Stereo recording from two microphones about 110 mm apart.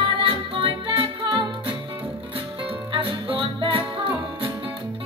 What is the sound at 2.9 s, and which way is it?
Music, 55° right (ahead or behind).